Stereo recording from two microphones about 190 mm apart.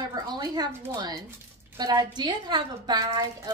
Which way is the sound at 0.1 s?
20° right (ahead or behind).